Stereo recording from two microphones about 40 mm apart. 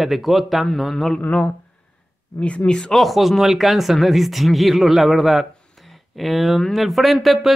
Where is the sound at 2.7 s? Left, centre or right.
Left.